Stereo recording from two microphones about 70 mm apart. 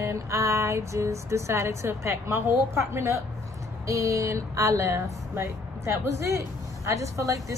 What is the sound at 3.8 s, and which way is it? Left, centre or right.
Speech, right.